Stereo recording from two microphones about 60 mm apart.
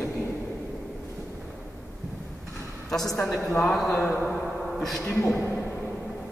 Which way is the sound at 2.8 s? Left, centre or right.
Centre.